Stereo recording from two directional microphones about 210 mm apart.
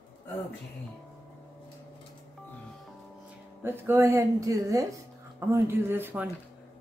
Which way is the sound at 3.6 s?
10° right (ahead or behind).